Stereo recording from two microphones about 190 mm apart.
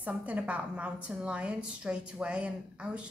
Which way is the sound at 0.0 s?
5° right (ahead or behind).